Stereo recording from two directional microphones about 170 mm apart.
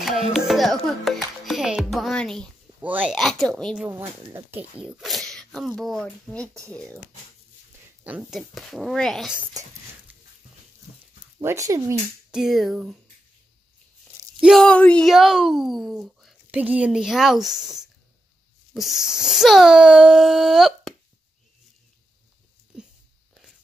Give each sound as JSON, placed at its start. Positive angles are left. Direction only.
{"t": 0.0, "sound": "music", "side_deg": 0}
{"t": 2.8, "sound": "speech", "side_deg": -10}
{"t": 8.0, "sound": "speech", "side_deg": -10}
{"t": 11.3, "sound": "speech", "side_deg": -20}
{"t": 12.3, "sound": "speech", "side_deg": 0}
{"t": 14.4, "sound": "speech", "side_deg": 0}